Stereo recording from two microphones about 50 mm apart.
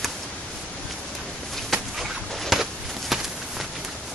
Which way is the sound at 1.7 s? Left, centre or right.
Centre.